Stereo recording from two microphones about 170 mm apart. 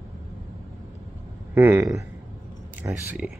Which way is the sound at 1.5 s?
15° right (ahead or behind).